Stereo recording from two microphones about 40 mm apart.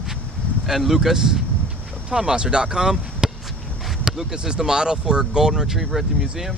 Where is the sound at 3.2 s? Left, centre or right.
Right.